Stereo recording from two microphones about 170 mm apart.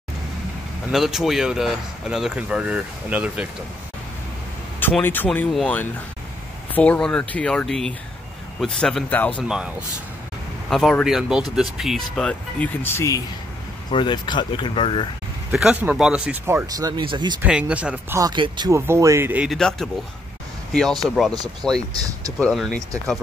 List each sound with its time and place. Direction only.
0.9 s speech: centre (ahead or behind)
4.7 s speech: 10° left (ahead or behind)
6.7 s speech: 10° left (ahead or behind)
10.7 s speech: centre (ahead or behind)
13.8 s speech: 25° left (ahead or behind)
15.5 s speech: 5° right (ahead or behind)
16.4 s speech: 20° right (ahead or behind)
17.4 s speech: 5° right (ahead or behind)
18.2 s speech: 25° right (ahead or behind)
18.8 s speech: 15° right (ahead or behind); by 21.8 s centre (ahead or behind)
21.9 s speech: 20° right (ahead or behind)
22.4 s speech: 5° left (ahead or behind)